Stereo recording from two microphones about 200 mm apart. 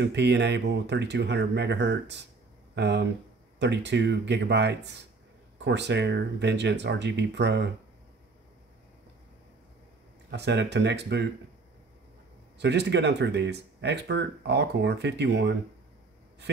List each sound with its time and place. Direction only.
0.0 s speech: 60° right (ahead or behind)
10.3 s speech: 60° right (ahead or behind)
12.5 s speech: 60° right (ahead or behind)